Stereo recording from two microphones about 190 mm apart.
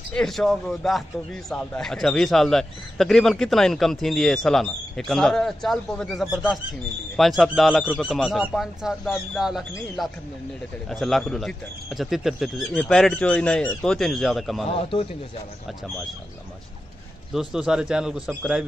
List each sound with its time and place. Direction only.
0.1 s a man's voice: 5° left (ahead or behind)
14.7 s a man's voice: 30° left (ahead or behind)
17.3 s a man's voice: 5° right (ahead or behind)